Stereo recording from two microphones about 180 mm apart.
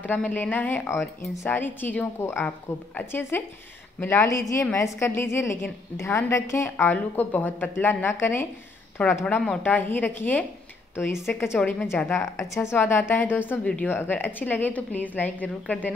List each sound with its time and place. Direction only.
0.0 s a woman's voice: 10° left (ahead or behind)